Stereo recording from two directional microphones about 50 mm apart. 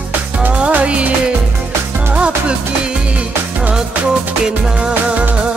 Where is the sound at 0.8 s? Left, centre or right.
Right.